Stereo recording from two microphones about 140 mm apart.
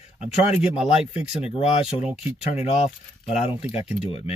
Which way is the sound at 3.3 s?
45° left (ahead or behind).